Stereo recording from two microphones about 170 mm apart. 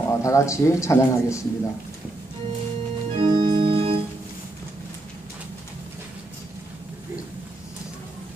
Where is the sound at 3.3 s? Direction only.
30° right (ahead or behind).